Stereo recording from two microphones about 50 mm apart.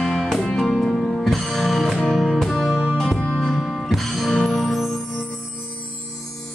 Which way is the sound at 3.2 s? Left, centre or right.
Centre.